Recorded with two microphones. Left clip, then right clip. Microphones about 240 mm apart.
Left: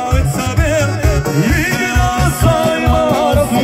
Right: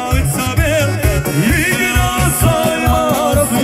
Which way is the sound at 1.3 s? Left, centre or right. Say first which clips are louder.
Right 2 dB; right.